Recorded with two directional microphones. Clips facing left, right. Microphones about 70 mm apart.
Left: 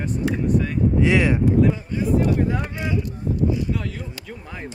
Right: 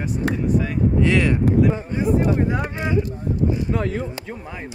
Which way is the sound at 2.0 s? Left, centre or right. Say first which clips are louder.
Right 1 dB; right.